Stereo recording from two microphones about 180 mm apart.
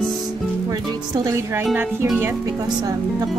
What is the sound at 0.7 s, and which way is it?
Speech, 20° right (ahead or behind).